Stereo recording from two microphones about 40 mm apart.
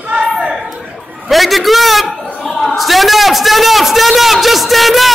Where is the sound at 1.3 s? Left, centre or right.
Centre.